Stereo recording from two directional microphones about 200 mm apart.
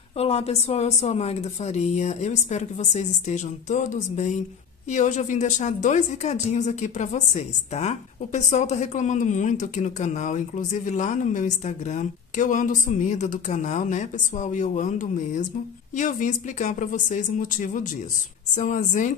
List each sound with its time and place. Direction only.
0.2 s a woman's voice: 30° left (ahead or behind)